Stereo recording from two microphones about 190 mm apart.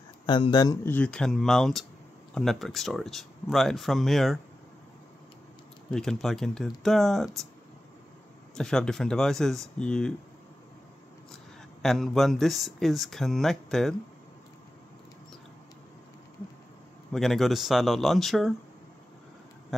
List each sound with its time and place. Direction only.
0.3 s speech: 25° left (ahead or behind)
0.9 s speech: 5° left (ahead or behind)
5.9 s speech: centre (ahead or behind)
8.5 s speech: 5° left (ahead or behind)
11.8 s speech: centre (ahead or behind)
17.1 s speech: centre (ahead or behind)